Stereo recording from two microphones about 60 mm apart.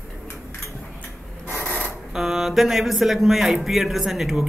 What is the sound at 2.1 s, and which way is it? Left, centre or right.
Speech, centre.